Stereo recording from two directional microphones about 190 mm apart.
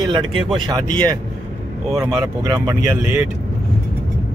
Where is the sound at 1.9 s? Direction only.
20° right (ahead or behind).